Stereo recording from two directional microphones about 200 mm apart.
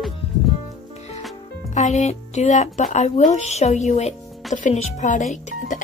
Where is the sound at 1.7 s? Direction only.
35° left (ahead or behind).